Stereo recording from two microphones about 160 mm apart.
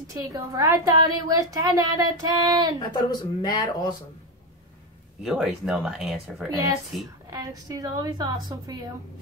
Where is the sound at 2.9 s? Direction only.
25° left (ahead or behind).